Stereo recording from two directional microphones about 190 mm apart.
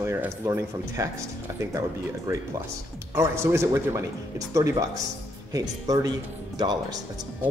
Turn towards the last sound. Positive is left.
turn(degrees=-20)  # may be behind; listen again after turning